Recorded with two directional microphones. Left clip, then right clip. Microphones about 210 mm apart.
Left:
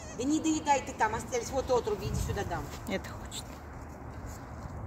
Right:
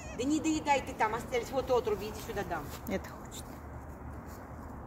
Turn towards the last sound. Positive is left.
turn(degrees=-5)  # may be behind; listen again after turning